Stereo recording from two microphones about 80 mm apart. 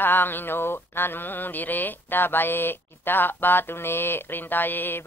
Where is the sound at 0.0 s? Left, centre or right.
Left.